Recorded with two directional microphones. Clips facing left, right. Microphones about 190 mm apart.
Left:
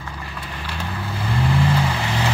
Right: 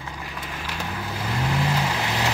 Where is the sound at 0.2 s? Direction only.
15° right (ahead or behind).